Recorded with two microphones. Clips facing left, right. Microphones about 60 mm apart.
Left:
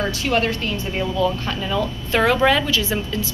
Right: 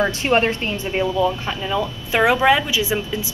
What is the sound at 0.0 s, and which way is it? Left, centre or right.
A woman's voice, right.